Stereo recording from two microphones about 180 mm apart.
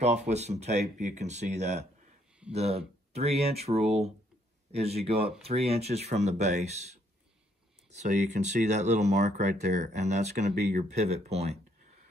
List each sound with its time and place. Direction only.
0.0 s speech: 40° right (ahead or behind)
7.9 s speech: 40° right (ahead or behind)